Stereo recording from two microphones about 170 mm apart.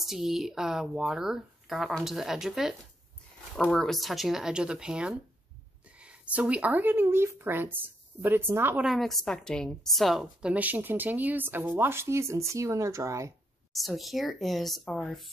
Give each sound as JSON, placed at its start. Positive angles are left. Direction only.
{"t": 0.0, "sound": "speech", "side_deg": 0}
{"t": 3.7, "sound": "a woman's voice", "side_deg": 0}
{"t": 8.8, "sound": "a woman's voice", "side_deg": 0}
{"t": 13.7, "sound": "speech", "side_deg": 0}